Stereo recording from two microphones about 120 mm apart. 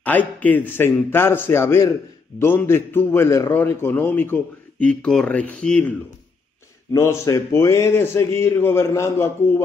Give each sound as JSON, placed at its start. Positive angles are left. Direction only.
{"t": 0.0, "sound": "speech", "side_deg": 15}
{"t": 6.9, "sound": "speech", "side_deg": 25}